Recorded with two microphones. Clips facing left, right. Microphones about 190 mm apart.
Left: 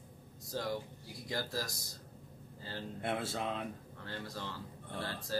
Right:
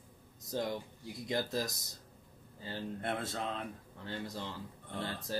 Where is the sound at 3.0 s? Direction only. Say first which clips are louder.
Left 3 dB; 5° left (ahead or behind).